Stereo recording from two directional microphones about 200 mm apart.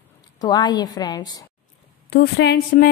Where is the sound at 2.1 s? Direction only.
55° left (ahead or behind).